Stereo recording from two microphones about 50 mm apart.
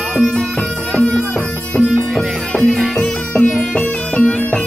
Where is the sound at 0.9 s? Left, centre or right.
Left.